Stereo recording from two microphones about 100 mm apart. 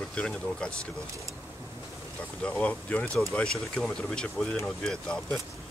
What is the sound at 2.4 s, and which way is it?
Speech, 15° left (ahead or behind).